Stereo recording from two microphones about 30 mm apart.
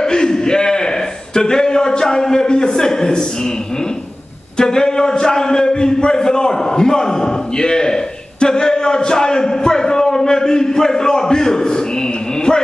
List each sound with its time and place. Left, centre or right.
0.0 s a sound: left
1.3 s a man's voice: left
4.6 s a man's voice: left